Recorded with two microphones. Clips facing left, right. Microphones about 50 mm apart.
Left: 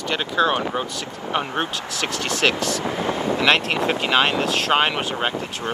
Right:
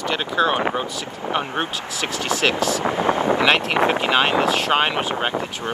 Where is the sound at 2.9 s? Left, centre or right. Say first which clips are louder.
Right 5 dB; right; by 5.3 s centre.